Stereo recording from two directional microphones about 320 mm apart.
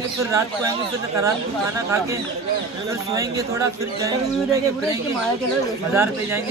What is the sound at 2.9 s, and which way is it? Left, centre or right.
Speech, centre.